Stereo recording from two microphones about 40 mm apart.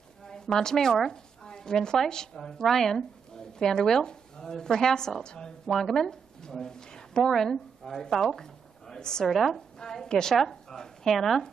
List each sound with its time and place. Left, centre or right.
0.2 s a woman's voice: centre
5.7 s a woman's voice: centre
9.3 s speech: centre
9.8 s a woman's voice: centre